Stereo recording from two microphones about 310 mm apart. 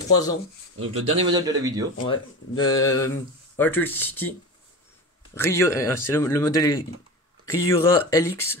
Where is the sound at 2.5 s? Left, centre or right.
Centre.